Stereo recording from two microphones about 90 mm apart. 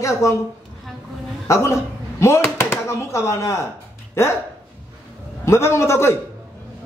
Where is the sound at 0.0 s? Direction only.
35° left (ahead or behind).